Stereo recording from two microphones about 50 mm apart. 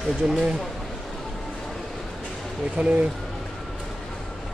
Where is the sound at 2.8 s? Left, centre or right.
Right.